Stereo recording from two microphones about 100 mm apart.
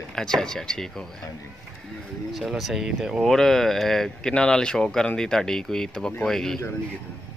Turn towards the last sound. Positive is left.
turn(degrees=5)  # may be behind; listen again after turning